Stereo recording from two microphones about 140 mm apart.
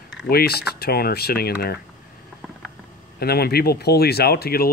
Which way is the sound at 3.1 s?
90° left.